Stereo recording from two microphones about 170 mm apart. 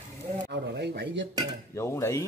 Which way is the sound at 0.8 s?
80° right.